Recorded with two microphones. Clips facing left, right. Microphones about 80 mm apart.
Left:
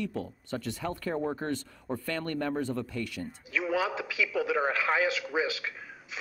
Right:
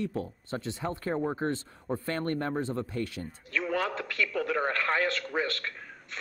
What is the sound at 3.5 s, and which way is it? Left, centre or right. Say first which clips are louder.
A man's voice: left 1 dB; centre.